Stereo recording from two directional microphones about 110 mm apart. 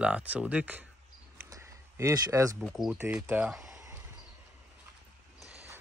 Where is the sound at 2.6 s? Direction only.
Centre (ahead or behind).